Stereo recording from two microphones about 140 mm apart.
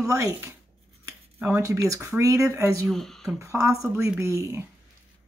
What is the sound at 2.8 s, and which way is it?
Speech, 5° left (ahead or behind).